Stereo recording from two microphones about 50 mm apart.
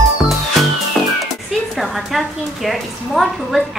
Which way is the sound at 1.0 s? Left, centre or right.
Centre.